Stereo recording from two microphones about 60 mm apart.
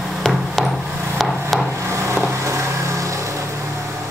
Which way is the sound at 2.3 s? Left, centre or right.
Right.